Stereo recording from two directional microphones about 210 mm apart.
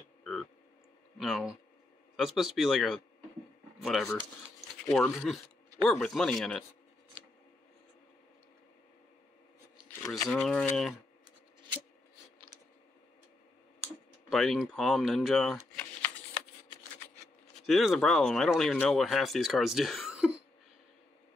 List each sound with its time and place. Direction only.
0.2 s a sound: 5° left (ahead or behind)
1.1 s speech: centre (ahead or behind)
10.2 s speech: 5° left (ahead or behind)
14.3 s speech: centre (ahead or behind)
17.6 s speech: centre (ahead or behind)